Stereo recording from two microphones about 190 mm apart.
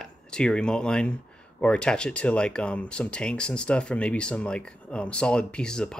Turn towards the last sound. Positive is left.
turn(degrees=5)  # may be behind; listen again after turning